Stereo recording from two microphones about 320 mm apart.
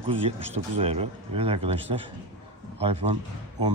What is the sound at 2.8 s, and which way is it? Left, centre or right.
Speech, centre.